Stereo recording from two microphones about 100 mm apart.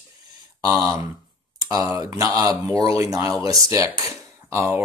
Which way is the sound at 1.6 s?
30° right (ahead or behind).